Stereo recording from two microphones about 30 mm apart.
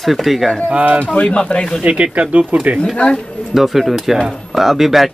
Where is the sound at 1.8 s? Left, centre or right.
Right.